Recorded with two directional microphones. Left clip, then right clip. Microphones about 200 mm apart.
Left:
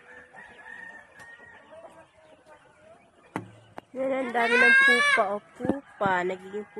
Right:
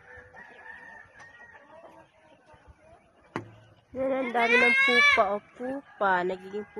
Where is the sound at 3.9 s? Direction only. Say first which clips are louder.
Even; 5° right (ahead or behind).